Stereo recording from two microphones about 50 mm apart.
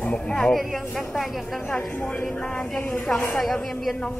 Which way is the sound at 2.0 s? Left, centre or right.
Centre.